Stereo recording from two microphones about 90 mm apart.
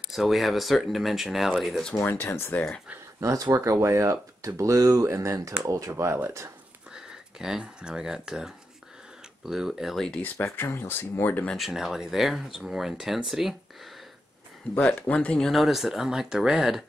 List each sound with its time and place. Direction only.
0.1 s speech: centre (ahead or behind)
2.0 s speech: 25° left (ahead or behind)
3.2 s speech: 35° right (ahead or behind)
6.9 s speech: 5° right (ahead or behind)
10.4 s speech: 25° left (ahead or behind)
11.5 s speech: centre (ahead or behind)
14.8 s speech: 15° left (ahead or behind); by 16.8 s 5° right (ahead or behind)